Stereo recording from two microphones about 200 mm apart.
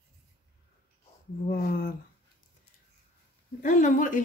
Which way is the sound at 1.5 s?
50° left (ahead or behind).